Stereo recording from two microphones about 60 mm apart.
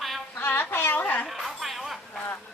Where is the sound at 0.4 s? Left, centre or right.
Left.